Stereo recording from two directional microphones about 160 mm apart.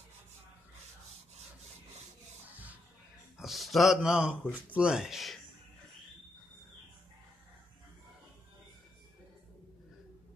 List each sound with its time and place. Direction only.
2.5 s music: 10° right (ahead or behind)
3.3 s speech: centre (ahead or behind)